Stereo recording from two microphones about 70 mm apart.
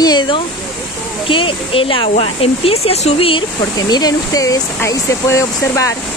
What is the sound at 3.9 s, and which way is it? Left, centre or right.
Speech, left.